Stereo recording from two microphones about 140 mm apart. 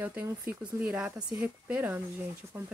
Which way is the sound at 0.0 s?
10° right (ahead or behind).